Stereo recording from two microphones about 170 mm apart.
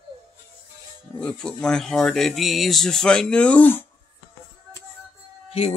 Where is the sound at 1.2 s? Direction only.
5° left (ahead or behind).